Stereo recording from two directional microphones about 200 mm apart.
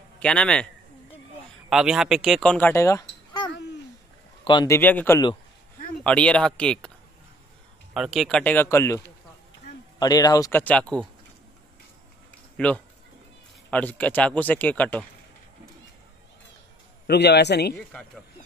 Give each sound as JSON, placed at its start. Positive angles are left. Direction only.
{"t": 0.2, "sound": "speech", "side_deg": 5}
{"t": 1.7, "sound": "speech", "side_deg": -5}
{"t": 6.0, "sound": "speech", "side_deg": 5}
{"t": 7.9, "sound": "speech", "side_deg": 0}
{"t": 12.5, "sound": "speech", "side_deg": 5}
{"t": 17.1, "sound": "a man's voice", "side_deg": 55}
{"t": 17.7, "sound": "speech", "side_deg": 5}